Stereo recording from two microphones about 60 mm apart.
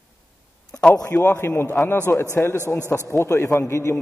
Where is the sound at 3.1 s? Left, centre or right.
Left.